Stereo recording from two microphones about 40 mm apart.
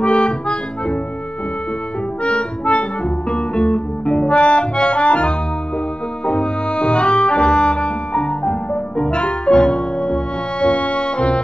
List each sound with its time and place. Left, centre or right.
0.0 s accordion: left
2.2 s music: left